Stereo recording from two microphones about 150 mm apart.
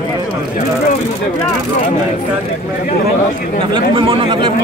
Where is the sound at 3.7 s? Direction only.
30° right (ahead or behind).